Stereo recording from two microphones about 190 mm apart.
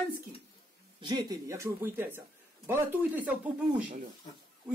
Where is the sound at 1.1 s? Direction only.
15° right (ahead or behind).